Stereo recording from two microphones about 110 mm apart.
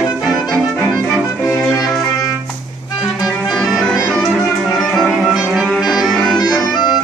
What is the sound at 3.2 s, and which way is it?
Music, centre (ahead or behind).